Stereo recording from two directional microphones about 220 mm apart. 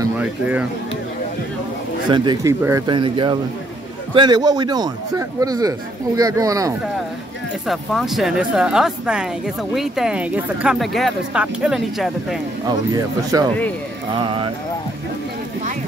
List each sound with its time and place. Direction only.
0.0 s speech: 10° right (ahead or behind)
2.0 s a man's voice: 20° right (ahead or behind)
7.6 s speech: centre (ahead or behind)
12.9 s a man's voice: 15° right (ahead or behind)